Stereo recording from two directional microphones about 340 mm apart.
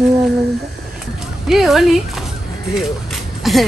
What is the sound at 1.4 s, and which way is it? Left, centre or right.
Speech, centre.